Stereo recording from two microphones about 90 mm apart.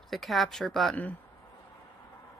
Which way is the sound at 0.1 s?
Centre (ahead or behind).